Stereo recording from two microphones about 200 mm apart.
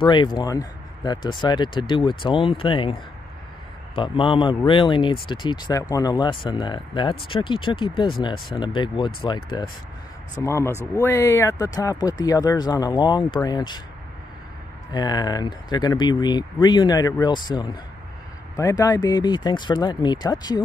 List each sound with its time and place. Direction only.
0.0 s speech: 25° left (ahead or behind)
14.9 s speech: 20° left (ahead or behind)